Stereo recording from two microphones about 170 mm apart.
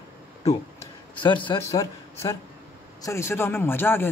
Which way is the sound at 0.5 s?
25° left (ahead or behind).